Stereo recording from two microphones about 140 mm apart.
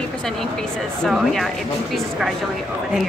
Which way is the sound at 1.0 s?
Centre (ahead or behind).